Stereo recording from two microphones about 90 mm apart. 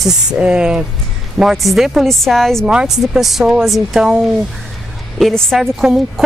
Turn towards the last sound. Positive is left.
turn(degrees=-5)  # may be behind; listen again after turning